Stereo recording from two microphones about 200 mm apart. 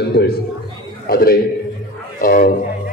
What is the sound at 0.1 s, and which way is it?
A man's voice, 55° left (ahead or behind).